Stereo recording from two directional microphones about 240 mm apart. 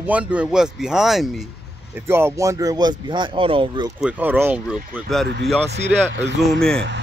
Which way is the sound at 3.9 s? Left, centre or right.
Centre.